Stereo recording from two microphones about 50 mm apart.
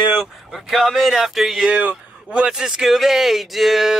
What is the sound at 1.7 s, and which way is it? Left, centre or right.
Speech, right.